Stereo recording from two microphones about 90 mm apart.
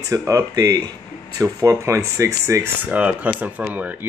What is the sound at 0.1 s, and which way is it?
Speech, 40° right (ahead or behind).